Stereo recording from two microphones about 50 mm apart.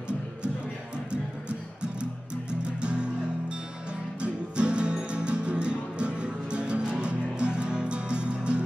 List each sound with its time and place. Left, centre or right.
2.8 s music: right